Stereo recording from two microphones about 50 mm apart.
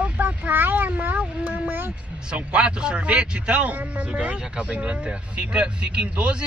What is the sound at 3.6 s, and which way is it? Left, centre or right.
Speech, right.